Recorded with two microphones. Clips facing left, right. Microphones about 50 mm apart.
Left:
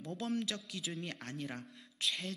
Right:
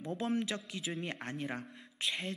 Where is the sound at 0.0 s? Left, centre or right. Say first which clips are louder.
Right 3 dB; right.